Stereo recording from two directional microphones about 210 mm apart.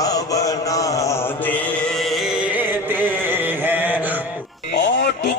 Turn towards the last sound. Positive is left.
turn(degrees=55)  # may be behind; listen again after turning